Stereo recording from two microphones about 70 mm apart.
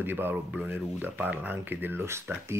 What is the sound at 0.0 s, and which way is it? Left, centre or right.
Speech, right.